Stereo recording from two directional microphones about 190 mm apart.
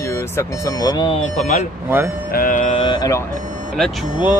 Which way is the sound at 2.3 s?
45° left (ahead or behind).